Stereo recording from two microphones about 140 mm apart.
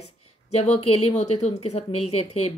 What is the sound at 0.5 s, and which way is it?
A woman's voice, 45° left (ahead or behind).